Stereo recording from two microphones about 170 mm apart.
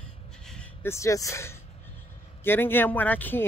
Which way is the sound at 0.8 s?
15° left (ahead or behind).